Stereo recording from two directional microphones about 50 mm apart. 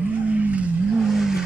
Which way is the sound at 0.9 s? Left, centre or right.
Centre.